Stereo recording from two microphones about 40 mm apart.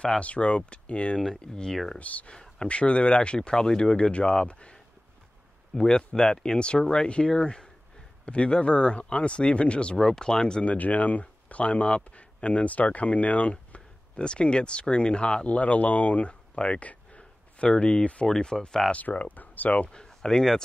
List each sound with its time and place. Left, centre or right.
0.2 s speech: left
2.0 s speech: left
2.3 s speech: centre
2.7 s speech: left
5.8 s speech: centre
10.6 s speech: left
18.2 s speech: centre
18.9 s speech: left
19.9 s a sound: left
20.2 s speech: centre